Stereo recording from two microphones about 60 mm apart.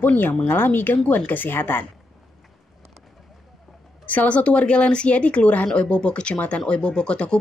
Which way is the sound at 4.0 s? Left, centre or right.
Left.